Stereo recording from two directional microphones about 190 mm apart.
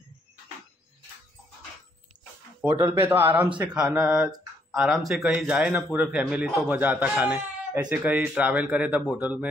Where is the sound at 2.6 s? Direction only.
10° right (ahead or behind).